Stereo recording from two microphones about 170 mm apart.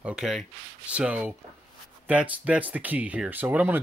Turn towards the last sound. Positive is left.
turn(degrees=-10)  # may be behind; listen again after turning